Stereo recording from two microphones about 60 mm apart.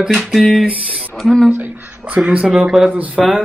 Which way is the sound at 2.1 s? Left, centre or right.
Centre.